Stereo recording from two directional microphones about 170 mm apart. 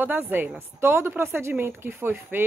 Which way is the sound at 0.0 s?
10° right (ahead or behind).